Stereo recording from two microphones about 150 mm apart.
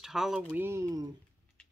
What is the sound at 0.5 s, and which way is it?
Speech, 15° right (ahead or behind).